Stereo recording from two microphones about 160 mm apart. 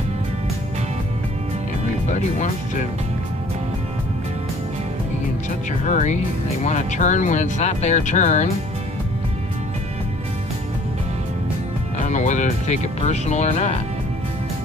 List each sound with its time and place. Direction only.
2.0 s speech: 50° left (ahead or behind)
5.7 s speech: 50° left (ahead or behind)
12.0 s speech: 50° left (ahead or behind)